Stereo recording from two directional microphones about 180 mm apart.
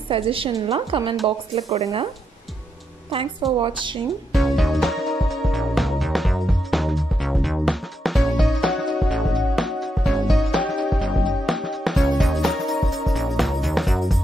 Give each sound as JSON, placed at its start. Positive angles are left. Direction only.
{"t": 0.1, "sound": "a woman's voice", "side_deg": -30}
{"t": 3.1, "sound": "a woman's voice", "side_deg": -30}
{"t": 4.3, "sound": "music", "side_deg": 0}